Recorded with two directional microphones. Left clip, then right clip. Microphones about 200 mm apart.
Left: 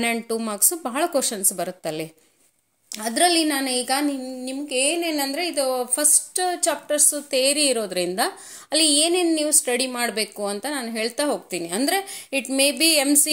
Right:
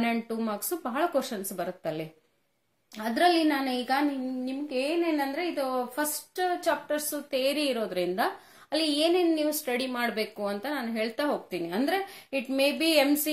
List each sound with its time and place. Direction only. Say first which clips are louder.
0.0 s a woman's voice: left 6 dB; 40° left (ahead or behind)